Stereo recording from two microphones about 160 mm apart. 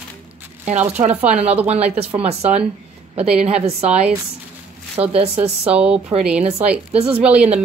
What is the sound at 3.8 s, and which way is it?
Speech, 5° right (ahead or behind).